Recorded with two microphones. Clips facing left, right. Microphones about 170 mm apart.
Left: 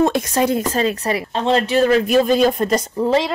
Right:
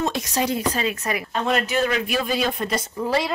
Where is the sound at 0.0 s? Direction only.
55° left (ahead or behind).